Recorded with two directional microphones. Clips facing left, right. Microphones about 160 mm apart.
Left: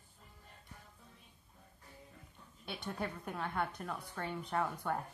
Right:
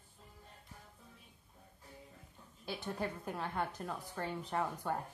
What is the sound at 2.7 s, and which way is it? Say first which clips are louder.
A woman's voice: right 1 dB; 5° right (ahead or behind).